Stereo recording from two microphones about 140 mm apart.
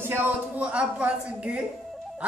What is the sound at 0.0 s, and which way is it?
A woman's voice, 15° right (ahead or behind).